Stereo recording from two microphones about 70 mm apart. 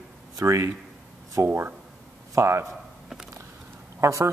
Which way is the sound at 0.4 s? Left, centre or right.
Right.